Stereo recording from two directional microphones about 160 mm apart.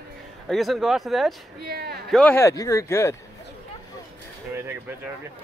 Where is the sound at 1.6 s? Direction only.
80° right.